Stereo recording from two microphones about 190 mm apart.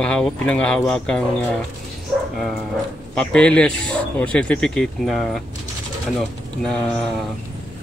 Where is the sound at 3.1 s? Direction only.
5° left (ahead or behind).